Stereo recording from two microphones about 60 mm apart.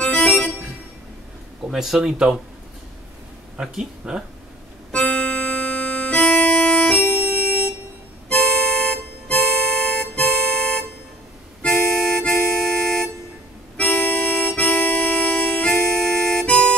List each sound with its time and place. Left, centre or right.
0.0 s music: centre
1.7 s speech: centre
3.5 s speech: centre
4.9 s music: centre
8.3 s music: centre
11.6 s harmonica: centre
13.7 s harmonica: left